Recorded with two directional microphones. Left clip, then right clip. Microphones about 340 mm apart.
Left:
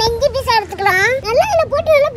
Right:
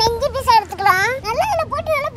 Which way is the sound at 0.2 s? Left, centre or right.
Centre.